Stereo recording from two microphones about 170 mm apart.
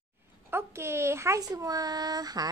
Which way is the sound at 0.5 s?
15° right (ahead or behind).